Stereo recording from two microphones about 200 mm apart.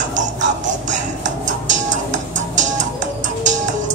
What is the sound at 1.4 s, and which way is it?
Music, 40° right (ahead or behind).